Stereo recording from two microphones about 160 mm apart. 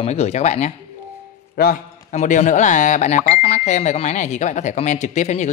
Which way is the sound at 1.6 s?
65° left (ahead or behind).